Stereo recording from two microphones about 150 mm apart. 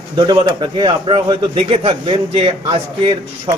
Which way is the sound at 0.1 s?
30° right (ahead or behind).